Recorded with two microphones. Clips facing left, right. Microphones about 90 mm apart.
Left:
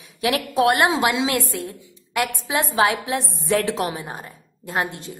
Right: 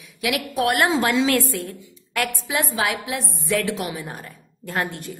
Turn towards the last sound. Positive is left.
turn(degrees=20)  # may be behind; listen again after turning